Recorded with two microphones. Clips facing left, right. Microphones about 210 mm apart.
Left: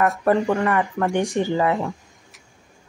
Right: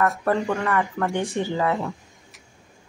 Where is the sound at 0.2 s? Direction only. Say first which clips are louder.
Left 4 dB; 15° left (ahead or behind).